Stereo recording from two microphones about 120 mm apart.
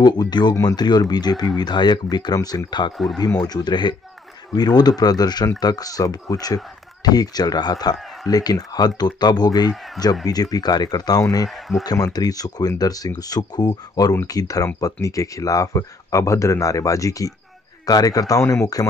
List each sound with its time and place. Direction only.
0.0 s speech: 35° left (ahead or behind)
11.4 s speech: centre (ahead or behind)
11.8 s speech: 30° left (ahead or behind)